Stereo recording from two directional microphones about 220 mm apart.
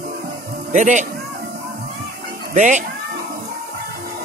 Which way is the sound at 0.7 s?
35° right (ahead or behind).